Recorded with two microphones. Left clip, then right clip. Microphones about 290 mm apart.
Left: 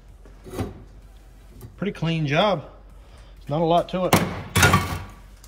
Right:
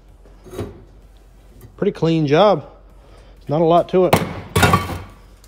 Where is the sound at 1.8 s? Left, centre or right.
Centre.